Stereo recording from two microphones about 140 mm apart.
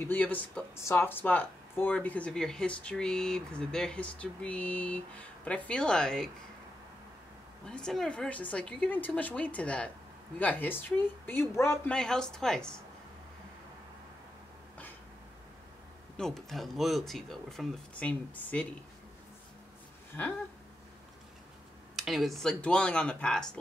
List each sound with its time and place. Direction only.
0.0 s speech: 15° left (ahead or behind)
7.6 s speech: 5° left (ahead or behind)
11.9 s speech: 5° left (ahead or behind)
16.2 s speech: 5° left (ahead or behind)
20.1 s speech: 10° left (ahead or behind)
21.9 s speech: centre (ahead or behind)